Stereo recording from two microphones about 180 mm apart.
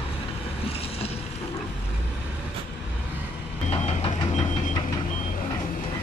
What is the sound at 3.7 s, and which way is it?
Vehicle, 35° left (ahead or behind).